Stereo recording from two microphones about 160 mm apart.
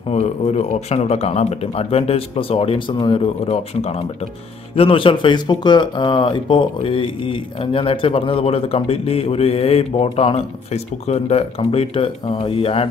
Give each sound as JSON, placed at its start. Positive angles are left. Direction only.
{"t": 0.1, "sound": "speech", "side_deg": 45}